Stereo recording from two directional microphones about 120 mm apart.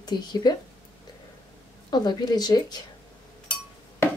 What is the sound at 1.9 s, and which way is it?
Speech, 35° left (ahead or behind).